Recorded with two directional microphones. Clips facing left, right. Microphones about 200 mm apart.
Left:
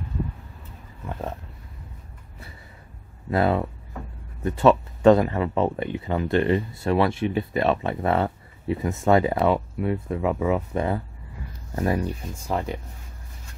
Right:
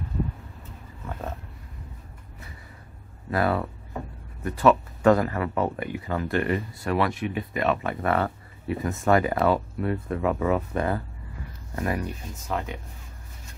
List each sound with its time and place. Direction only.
3.3 s speech: 25° left (ahead or behind)